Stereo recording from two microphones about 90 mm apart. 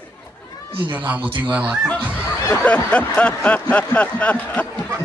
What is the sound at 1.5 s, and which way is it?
Speech, 15° right (ahead or behind).